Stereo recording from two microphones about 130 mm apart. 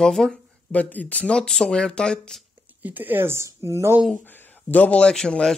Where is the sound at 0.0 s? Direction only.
Centre (ahead or behind).